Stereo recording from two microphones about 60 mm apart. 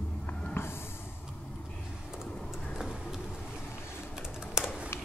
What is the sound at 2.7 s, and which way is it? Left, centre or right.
Vehicle, centre.